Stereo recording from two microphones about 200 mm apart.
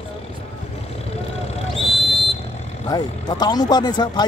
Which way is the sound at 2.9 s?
20° left (ahead or behind).